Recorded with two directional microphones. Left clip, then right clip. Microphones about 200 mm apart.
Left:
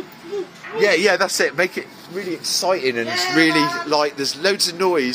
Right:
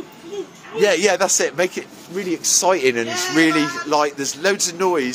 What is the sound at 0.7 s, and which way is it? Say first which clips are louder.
Speech: even; 25° right (ahead or behind).